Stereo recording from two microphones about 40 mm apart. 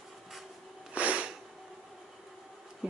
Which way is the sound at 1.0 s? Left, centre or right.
Right.